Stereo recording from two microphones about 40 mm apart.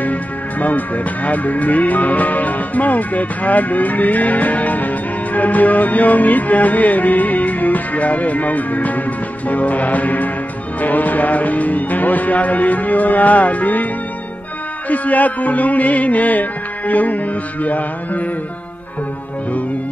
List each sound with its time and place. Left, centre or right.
0.0 s speech: left
9.5 s music: left
10.8 s speech: left
14.9 s music: left